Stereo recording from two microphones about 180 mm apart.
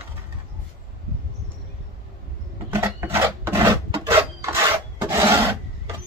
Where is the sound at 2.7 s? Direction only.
15° right (ahead or behind).